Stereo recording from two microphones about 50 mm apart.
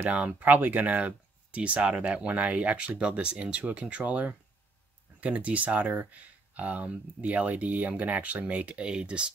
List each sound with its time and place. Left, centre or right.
0.0 s speech: right